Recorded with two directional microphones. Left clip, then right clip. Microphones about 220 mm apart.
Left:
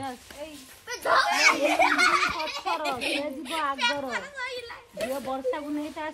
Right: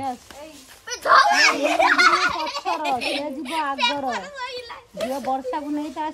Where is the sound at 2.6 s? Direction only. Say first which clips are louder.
Right 5 dB; 45° right (ahead or behind).